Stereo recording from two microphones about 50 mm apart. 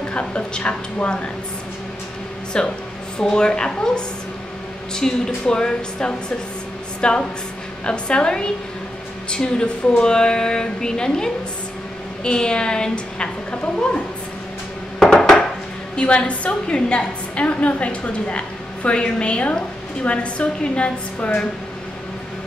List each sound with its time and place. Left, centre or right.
0.1 s a woman's voice: left
2.5 s a woman's voice: centre
15.1 s dishes: centre
16.0 s a woman's voice: left